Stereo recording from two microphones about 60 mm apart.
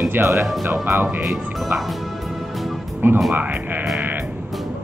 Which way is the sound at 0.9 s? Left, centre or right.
Right.